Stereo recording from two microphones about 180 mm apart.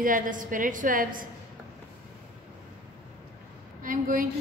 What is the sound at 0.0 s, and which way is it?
A woman's voice, 50° right (ahead or behind).